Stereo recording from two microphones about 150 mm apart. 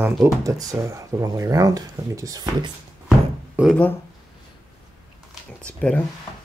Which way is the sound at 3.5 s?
5° right (ahead or behind).